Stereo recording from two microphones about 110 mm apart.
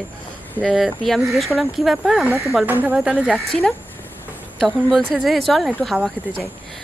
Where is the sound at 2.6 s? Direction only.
15° right (ahead or behind).